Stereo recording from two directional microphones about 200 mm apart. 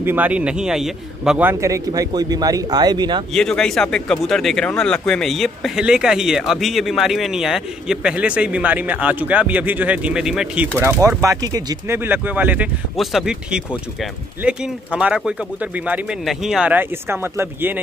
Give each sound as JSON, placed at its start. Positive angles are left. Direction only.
{"t": 0.0, "sound": "speech", "side_deg": -10}
{"t": 3.3, "sound": "speech", "side_deg": 5}